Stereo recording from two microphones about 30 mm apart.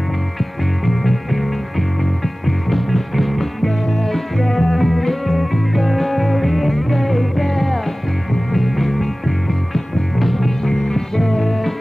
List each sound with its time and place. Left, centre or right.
0.8 s music: centre
10.1 s music: centre
10.6 s music: centre